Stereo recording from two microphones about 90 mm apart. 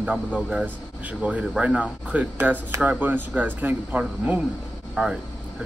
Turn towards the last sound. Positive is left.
turn(degrees=-5)  # may be behind; listen again after turning